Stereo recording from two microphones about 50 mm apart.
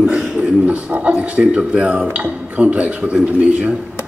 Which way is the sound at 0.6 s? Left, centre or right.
Right.